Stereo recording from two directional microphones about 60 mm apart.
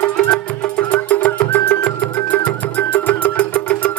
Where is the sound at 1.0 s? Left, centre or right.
Left.